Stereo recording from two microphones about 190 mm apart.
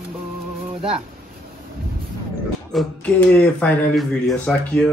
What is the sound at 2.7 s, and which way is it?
Speech, 5° left (ahead or behind).